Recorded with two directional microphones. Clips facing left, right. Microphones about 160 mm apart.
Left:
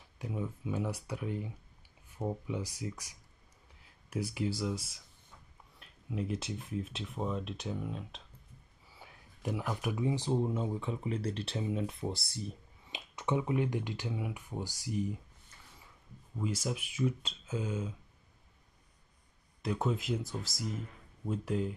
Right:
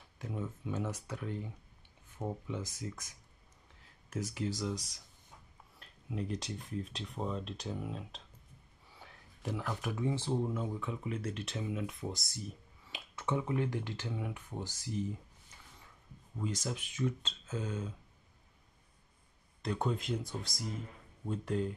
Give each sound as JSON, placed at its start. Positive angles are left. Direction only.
{"t": 0.3, "sound": "speech", "side_deg": 10}
{"t": 8.8, "sound": "a sound", "side_deg": 5}
{"t": 9.4, "sound": "speech", "side_deg": 15}
{"t": 12.8, "sound": "speech", "side_deg": 20}
{"t": 16.3, "sound": "speech", "side_deg": 10}
{"t": 19.6, "sound": "speech", "side_deg": 5}